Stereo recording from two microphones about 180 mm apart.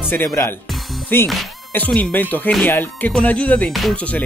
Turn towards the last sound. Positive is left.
turn(degrees=5)  # may be behind; listen again after turning